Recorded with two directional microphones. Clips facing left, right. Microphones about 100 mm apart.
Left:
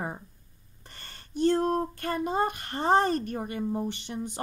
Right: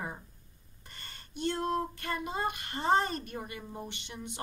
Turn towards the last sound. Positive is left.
turn(degrees=40)  # may be behind; listen again after turning